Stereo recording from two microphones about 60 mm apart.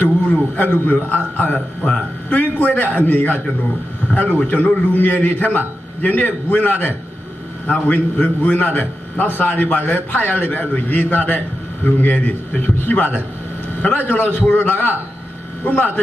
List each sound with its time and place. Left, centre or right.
0.3 s a man's voice: left